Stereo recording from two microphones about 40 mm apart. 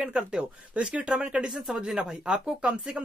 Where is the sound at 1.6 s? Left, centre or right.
Centre.